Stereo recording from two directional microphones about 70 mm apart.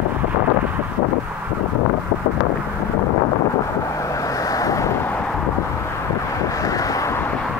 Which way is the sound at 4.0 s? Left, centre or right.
Left.